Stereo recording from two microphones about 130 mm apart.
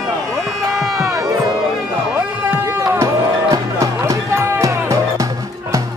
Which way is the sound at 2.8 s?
20° right (ahead or behind).